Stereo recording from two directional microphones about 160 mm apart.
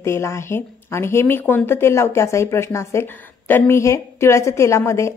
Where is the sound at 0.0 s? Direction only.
15° left (ahead or behind).